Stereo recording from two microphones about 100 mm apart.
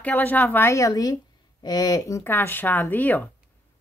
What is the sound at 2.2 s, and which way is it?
A woman's voice, 20° left (ahead or behind).